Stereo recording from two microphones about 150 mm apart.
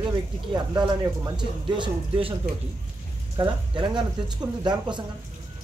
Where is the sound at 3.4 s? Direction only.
30° right (ahead or behind).